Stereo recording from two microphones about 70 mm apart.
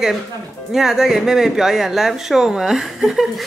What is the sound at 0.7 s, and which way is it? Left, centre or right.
Speech, centre.